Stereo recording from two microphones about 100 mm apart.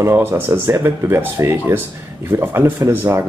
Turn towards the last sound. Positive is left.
turn(degrees=-25)  # may be behind; listen again after turning